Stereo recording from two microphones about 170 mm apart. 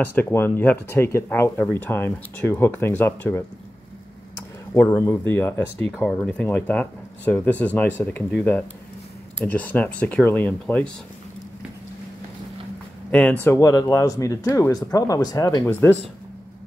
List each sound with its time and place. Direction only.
0.0 s speech: 10° left (ahead or behind)
4.7 s speech: 15° left (ahead or behind)
13.1 s speech: 10° left (ahead or behind)